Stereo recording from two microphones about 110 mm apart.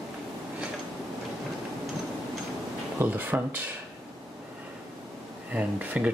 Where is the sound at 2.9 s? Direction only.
15° right (ahead or behind).